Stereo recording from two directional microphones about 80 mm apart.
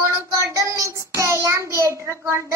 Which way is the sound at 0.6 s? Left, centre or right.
Right.